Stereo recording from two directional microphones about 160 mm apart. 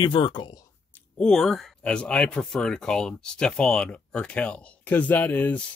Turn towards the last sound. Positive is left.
turn(degrees=10)  # may be behind; listen again after turning